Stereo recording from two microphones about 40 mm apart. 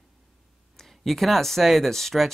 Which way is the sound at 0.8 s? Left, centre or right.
Centre.